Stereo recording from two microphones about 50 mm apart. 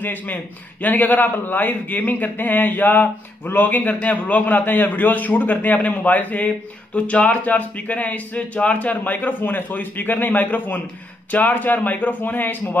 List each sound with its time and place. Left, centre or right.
0.0 s a man's voice: left